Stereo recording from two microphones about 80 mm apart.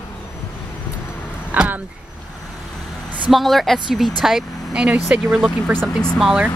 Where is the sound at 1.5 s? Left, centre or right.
Centre.